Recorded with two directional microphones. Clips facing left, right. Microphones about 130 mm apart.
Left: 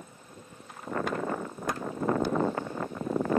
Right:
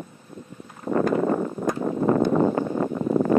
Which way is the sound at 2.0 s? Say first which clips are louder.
Right 7 dB; 45° right (ahead or behind).